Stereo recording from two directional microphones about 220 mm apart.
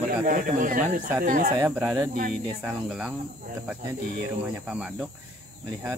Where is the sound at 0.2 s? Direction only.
35° right (ahead or behind).